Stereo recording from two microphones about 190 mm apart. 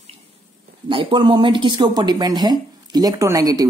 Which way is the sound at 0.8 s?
25° right (ahead or behind).